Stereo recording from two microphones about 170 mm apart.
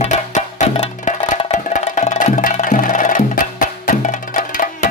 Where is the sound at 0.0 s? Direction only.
45° left (ahead or behind).